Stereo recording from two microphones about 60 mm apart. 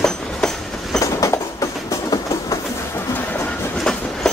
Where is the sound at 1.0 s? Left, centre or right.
Left.